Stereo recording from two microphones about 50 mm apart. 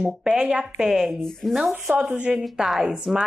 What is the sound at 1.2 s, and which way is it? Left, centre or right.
Speech, centre.